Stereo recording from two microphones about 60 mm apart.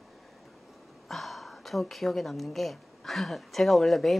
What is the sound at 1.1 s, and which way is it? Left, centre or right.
A woman's voice, centre.